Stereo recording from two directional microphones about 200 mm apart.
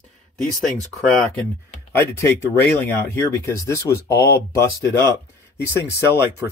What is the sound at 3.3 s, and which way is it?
Speech, 15° left (ahead or behind).